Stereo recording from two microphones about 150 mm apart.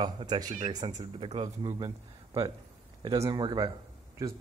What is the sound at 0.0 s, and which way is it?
Speech, 30° right (ahead or behind).